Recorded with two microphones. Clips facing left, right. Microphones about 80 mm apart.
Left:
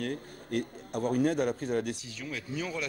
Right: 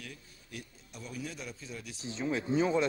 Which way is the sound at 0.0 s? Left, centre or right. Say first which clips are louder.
Left 14 dB; left.